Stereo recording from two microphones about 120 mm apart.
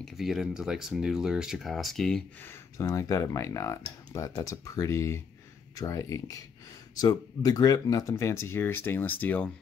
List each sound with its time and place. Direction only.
0.0 s speech: centre (ahead or behind)
2.4 s speech: 25° left (ahead or behind)